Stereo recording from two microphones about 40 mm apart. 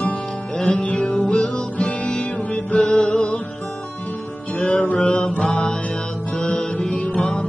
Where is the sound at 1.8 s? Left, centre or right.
Left.